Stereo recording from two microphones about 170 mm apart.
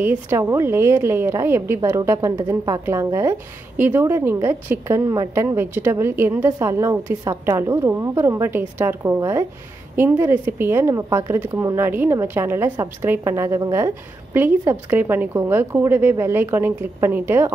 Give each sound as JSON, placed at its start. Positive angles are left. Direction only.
{"t": 0.0, "sound": "a woman's voice", "side_deg": -15}